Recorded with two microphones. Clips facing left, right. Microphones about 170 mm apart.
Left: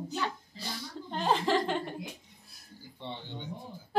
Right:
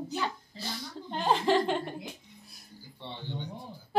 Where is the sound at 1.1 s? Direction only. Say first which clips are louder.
Right 2 dB; centre (ahead or behind).